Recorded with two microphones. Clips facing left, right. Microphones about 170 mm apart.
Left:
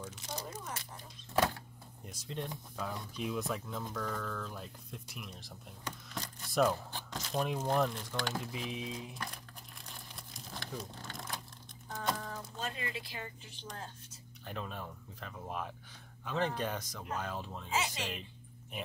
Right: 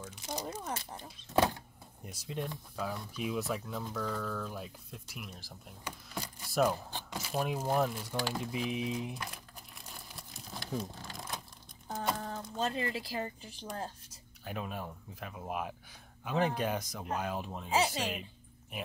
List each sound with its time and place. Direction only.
0.3 s speech: 30° right (ahead or behind)
2.0 s speech: 10° right (ahead or behind)
9.2 s crumpling: 5° right (ahead or behind)
12.2 s speech: 30° right (ahead or behind)
14.4 s speech: 10° right (ahead or behind)
17.6 s speech: 35° right (ahead or behind)